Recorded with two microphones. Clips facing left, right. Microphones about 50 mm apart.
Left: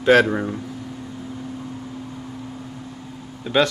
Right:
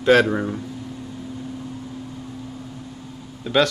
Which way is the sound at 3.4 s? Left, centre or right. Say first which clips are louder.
Even; centre.